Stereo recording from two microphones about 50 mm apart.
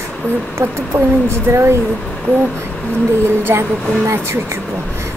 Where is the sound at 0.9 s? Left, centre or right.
Right.